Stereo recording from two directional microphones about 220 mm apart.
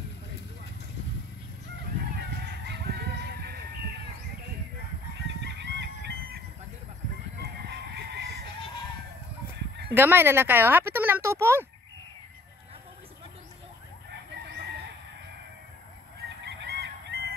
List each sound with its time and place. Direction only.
2.4 s chicken: 50° right (ahead or behind)
5.4 s chicken: 50° right (ahead or behind)
7.6 s music: 50° right (ahead or behind)
9.9 s speech: 10° right (ahead or behind)
16.4 s honk: 50° right (ahead or behind)